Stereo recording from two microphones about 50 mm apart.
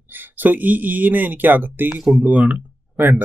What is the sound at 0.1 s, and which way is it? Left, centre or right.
Speech, right.